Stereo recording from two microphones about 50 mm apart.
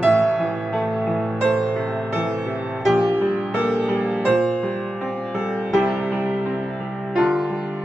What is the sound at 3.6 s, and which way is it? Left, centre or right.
Music, left.